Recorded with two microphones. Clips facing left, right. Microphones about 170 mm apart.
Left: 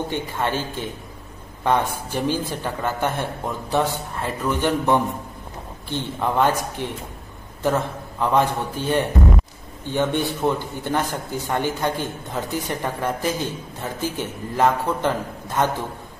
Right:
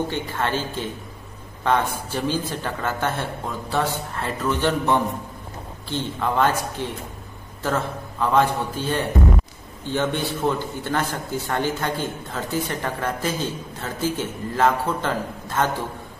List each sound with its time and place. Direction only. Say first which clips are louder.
0.1 s a man's voice: left 1 dB; 15° left (ahead or behind)